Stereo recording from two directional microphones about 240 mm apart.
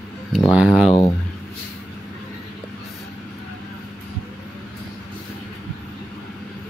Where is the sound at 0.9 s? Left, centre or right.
Centre.